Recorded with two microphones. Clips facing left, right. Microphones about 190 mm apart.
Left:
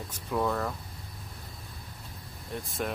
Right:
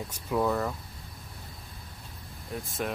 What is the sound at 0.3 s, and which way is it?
Speech, 5° right (ahead or behind).